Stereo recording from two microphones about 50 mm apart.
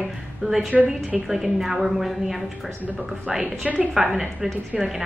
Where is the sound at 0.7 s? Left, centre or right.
Right.